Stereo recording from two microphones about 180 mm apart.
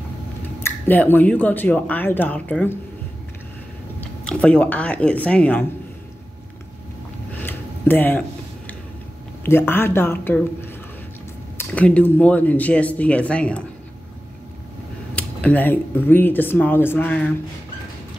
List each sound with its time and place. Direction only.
0.6 s speech: 10° left (ahead or behind)
4.2 s speech: 5° left (ahead or behind)
7.3 s a sound: 10° left (ahead or behind)
9.4 s speech: 15° left (ahead or behind)
15.1 s speech: 10° left (ahead or behind)